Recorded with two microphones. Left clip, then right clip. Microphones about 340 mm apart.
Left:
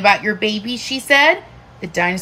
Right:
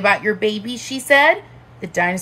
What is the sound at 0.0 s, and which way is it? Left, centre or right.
A woman's voice, centre.